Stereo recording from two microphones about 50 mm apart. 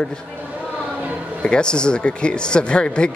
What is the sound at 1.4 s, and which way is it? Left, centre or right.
Speech, centre.